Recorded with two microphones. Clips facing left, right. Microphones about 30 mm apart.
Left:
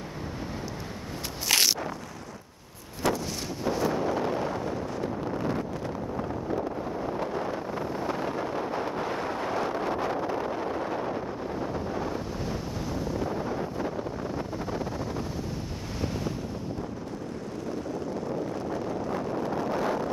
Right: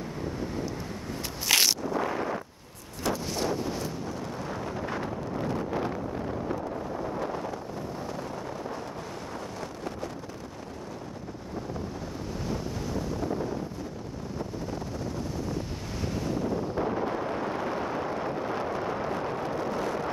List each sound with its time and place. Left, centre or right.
1.5 s a sound: centre
3.6 s wind noise: centre
3.9 s vehicle: left
12.4 s wind noise: centre